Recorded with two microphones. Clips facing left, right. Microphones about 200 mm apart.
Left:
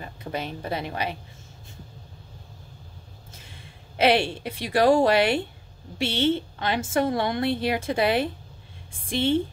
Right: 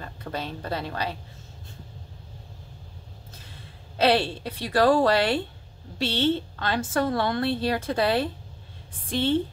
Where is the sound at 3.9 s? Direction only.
15° left (ahead or behind).